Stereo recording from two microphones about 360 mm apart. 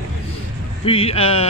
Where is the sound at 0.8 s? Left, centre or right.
Centre.